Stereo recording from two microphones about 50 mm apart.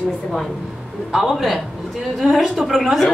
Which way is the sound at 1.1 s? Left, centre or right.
Centre.